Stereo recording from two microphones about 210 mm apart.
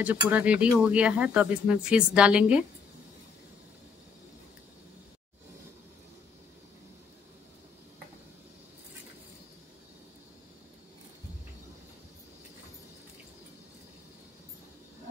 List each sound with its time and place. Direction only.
0.0 s speech: 5° right (ahead or behind)